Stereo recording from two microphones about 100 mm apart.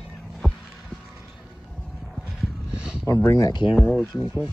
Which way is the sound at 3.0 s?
30° left (ahead or behind).